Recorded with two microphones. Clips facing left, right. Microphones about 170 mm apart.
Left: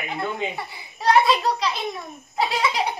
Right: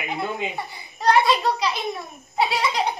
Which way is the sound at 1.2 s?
Centre (ahead or behind).